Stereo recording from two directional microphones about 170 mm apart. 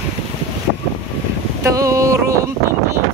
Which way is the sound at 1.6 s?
20° right (ahead or behind).